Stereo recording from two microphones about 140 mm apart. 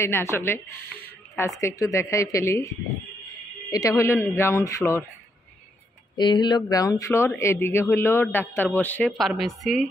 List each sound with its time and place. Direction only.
0.0 s speech: 20° left (ahead or behind)
3.7 s speech: 20° left (ahead or behind)
6.1 s speech: 30° left (ahead or behind); by 9.1 s 10° left (ahead or behind)
9.4 s a woman's voice: centre (ahead or behind)